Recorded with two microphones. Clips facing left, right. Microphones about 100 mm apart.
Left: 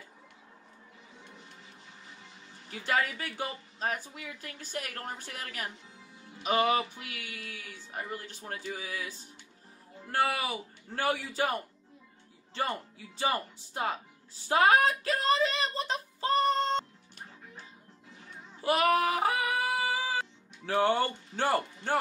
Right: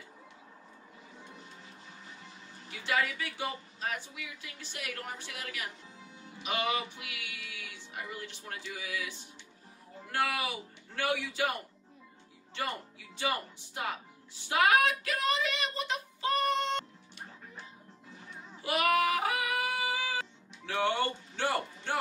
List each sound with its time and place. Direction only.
2.7 s a woman's voice: 40° left (ahead or behind)
13.2 s speech: 35° left (ahead or behind)
18.6 s music: 35° left (ahead or behind)